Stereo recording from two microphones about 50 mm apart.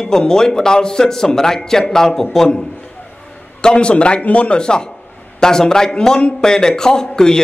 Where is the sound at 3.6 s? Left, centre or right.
Centre.